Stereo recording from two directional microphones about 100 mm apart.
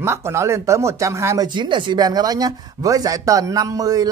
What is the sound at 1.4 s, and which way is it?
Speech, 50° right (ahead or behind).